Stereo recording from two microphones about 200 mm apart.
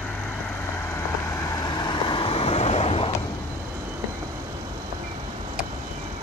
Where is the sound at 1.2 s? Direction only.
15° left (ahead or behind).